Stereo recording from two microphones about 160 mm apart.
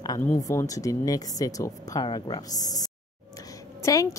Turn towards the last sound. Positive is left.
turn(degrees=20)  # may be behind; listen again after turning